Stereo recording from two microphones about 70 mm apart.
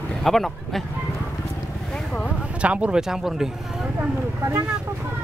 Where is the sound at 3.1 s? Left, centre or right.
Centre.